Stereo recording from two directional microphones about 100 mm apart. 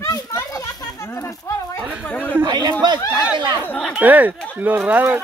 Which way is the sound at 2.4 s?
50° right (ahead or behind).